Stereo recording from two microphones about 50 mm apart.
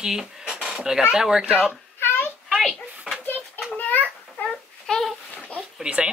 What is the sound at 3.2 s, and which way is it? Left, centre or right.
Children playing, left.